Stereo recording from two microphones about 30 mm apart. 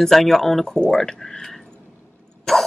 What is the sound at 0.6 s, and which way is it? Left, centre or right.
Speech, left.